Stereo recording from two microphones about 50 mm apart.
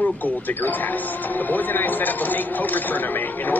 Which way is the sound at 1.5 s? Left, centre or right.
Left.